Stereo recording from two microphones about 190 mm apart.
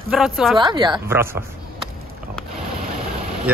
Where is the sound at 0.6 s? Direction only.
25° right (ahead or behind).